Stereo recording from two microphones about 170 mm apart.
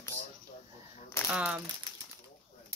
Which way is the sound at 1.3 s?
5° right (ahead or behind).